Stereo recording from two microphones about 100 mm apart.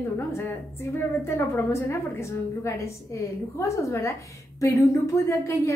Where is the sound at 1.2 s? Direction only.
25° left (ahead or behind).